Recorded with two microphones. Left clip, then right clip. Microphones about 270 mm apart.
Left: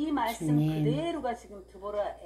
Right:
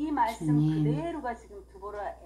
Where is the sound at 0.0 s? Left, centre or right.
Left.